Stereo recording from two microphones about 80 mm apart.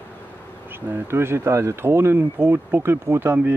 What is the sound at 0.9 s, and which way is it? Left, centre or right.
Speech, right.